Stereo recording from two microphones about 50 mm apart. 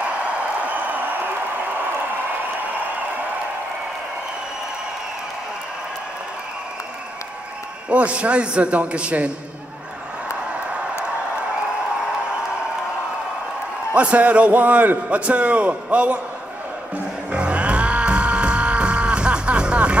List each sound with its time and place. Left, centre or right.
0.4 s a sound: right
7.9 s a man's voice: right
13.9 s a man's voice: right
17.3 s music: right